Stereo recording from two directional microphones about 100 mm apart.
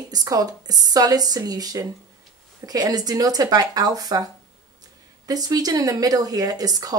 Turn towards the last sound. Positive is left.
turn(degrees=-40)  # may be behind; listen again after turning